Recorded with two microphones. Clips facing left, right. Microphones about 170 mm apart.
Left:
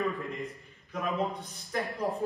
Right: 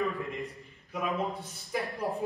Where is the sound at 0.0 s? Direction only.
Centre (ahead or behind).